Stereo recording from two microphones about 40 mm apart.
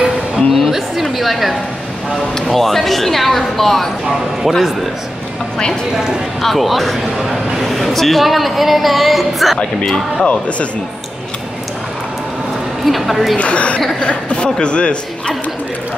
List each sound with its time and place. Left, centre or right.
0.5 s a woman's voice: centre
6.4 s a woman's voice: centre
12.8 s a woman's voice: centre
13.4 s speech: left